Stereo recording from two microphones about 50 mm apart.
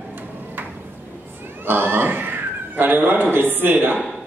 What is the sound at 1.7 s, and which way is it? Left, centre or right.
A man's voice, right.